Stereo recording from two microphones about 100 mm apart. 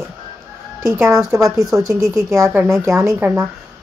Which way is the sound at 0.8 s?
30° right (ahead or behind).